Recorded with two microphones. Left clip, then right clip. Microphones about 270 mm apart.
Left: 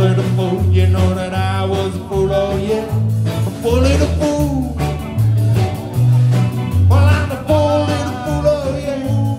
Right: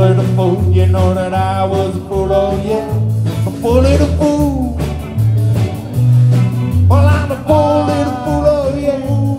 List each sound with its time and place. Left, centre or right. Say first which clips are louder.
0.0 s music: right 4 dB; centre
7.4 s music: right 3 dB; centre